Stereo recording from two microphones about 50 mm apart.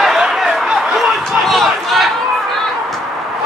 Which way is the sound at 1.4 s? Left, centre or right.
Centre.